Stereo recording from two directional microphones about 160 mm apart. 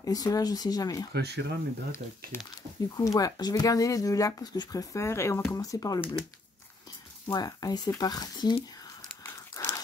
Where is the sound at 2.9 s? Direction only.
20° left (ahead or behind).